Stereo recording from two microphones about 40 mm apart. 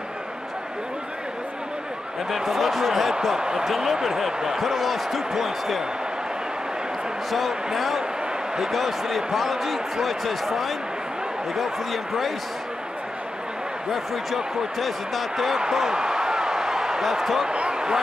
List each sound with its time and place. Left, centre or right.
2.3 s speech: centre
3.3 s speech: centre
3.6 s speech: centre
7.2 s speech: centre
13.9 s speech: centre
15.6 s a sound: centre
17.5 s speech: right